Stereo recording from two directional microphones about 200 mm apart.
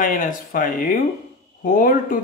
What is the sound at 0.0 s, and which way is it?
A man's voice, 40° left (ahead or behind).